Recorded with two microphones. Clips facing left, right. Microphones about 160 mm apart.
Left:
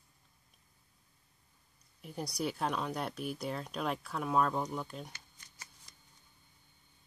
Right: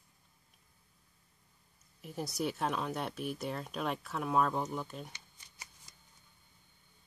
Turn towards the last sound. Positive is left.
turn(degrees=-15)  # may be behind; listen again after turning